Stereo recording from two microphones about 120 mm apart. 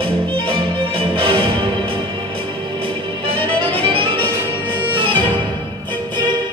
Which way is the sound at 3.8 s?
45° right (ahead or behind).